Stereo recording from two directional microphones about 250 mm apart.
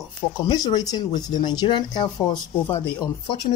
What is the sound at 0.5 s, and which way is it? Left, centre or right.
Speech, centre.